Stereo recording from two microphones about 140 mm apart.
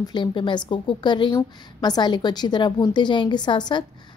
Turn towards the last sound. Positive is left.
turn(degrees=35)  # may be behind; listen again after turning